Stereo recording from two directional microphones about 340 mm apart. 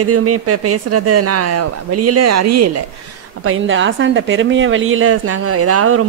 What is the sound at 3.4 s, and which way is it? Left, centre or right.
A woman's voice, right.